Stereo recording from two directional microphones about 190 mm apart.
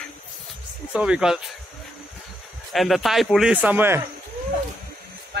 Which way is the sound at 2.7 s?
Centre (ahead or behind).